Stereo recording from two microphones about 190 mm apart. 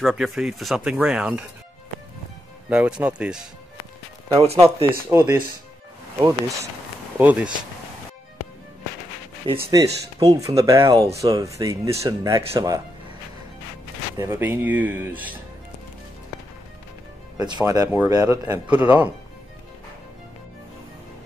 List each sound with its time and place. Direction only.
0.0 s speech: centre (ahead or behind)
2.7 s speech: 5° right (ahead or behind)
5.1 s speech: 10° right (ahead or behind)
9.7 s speech: 20° right (ahead or behind)
14.1 s speech: 15° right (ahead or behind)
17.4 s speech: 20° right (ahead or behind)